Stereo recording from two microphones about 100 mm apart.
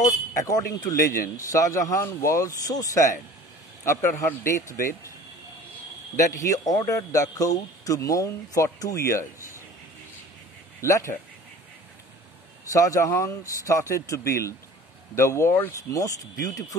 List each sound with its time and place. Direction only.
0.0 s speech: 35° left (ahead or behind)
4.3 s speech: 25° left (ahead or behind)
6.1 s speech: 35° left (ahead or behind)
10.8 s speech: 30° left (ahead or behind)
12.7 s speech: 30° left (ahead or behind)